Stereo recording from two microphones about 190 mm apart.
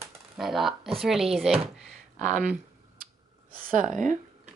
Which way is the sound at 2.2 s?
45° right (ahead or behind).